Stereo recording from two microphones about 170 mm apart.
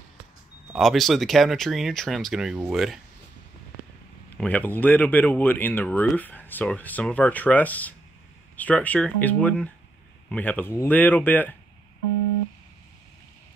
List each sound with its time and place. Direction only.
0.7 s speech: centre (ahead or behind)
4.4 s speech: 10° left (ahead or behind)